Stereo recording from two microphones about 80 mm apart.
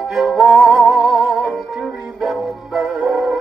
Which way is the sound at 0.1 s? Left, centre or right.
Centre.